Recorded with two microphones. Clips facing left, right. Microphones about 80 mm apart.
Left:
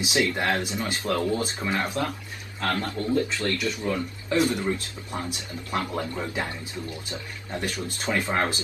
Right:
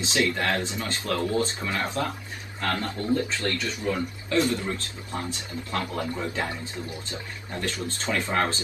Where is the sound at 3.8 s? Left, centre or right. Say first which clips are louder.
Even; left.